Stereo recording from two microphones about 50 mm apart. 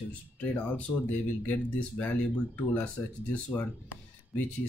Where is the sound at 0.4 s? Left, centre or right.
Left.